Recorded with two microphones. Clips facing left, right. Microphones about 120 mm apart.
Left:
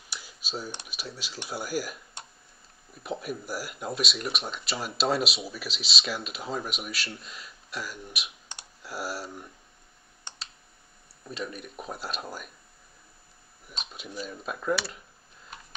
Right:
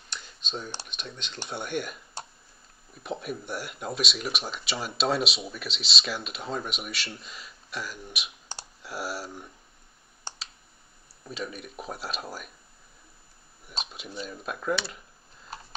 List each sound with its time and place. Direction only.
0.1 s computer keyboard: 5° left (ahead or behind)
0.8 s speech: 5° left (ahead or behind)
2.2 s burping: 30° right (ahead or behind)
2.9 s speech: centre (ahead or behind)
8.5 s clicking: 35° right (ahead or behind)
8.8 s speech: centre (ahead or behind)
10.3 s clicking: 30° right (ahead or behind)
11.2 s speech: centre (ahead or behind)
13.9 s speech: centre (ahead or behind)
15.5 s a sound: 35° right (ahead or behind)